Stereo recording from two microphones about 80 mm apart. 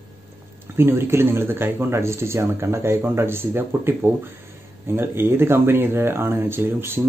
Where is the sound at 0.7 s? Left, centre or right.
Right.